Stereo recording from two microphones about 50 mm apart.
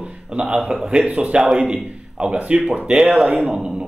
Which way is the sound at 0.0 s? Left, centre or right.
Centre.